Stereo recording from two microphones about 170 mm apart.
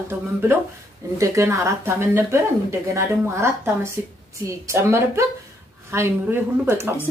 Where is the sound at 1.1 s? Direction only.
15° right (ahead or behind).